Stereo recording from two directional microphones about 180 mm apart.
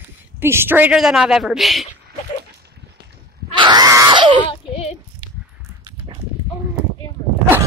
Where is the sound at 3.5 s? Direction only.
25° right (ahead or behind).